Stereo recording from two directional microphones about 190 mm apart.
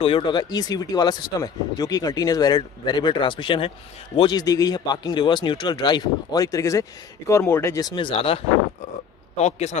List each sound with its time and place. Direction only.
0.0 s a man's voice: 25° left (ahead or behind)